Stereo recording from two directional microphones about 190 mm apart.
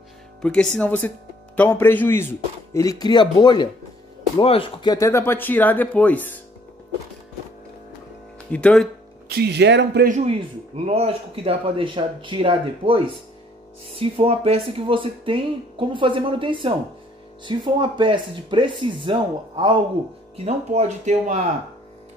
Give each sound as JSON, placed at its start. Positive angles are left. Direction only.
{"t": 0.4, "sound": "a man's voice", "side_deg": 5}
{"t": 8.5, "sound": "speech", "side_deg": 5}
{"t": 9.3, "sound": "speech", "side_deg": -60}
{"t": 10.0, "sound": "speech", "side_deg": -40}
{"t": 20.4, "sound": "speech", "side_deg": -35}